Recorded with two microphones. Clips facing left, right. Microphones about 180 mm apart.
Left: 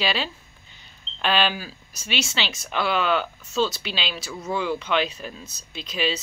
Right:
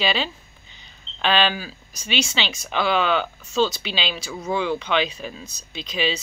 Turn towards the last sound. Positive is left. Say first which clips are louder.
# right 1 dB
turn(degrees=5)  # may be behind; listen again after turning